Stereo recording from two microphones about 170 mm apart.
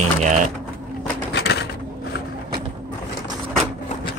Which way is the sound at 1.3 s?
80° left.